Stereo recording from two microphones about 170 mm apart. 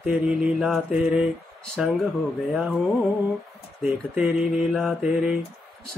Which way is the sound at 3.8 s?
5° right (ahead or behind).